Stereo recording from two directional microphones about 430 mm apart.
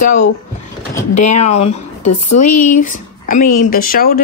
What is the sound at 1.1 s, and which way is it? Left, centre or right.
Speech, centre.